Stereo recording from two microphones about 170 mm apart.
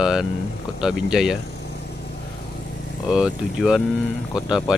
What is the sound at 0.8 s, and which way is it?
Speech, 5° right (ahead or behind).